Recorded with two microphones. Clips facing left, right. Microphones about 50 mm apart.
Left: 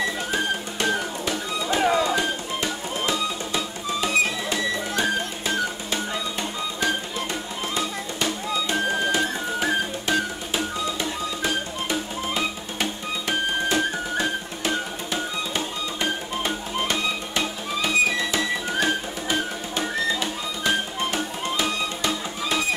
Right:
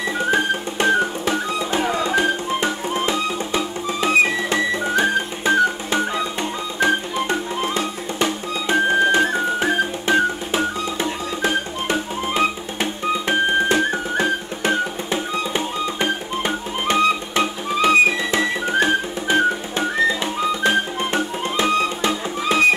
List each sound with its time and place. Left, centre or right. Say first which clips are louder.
0.3 s music: right 6 dB; right
20.6 s music: right 1 dB; right